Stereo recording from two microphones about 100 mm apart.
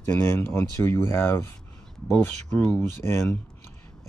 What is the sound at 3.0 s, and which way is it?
Speech, 25° left (ahead or behind).